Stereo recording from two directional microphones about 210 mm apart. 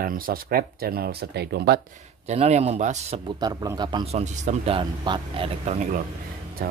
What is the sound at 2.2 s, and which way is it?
Speech, 30° right (ahead or behind).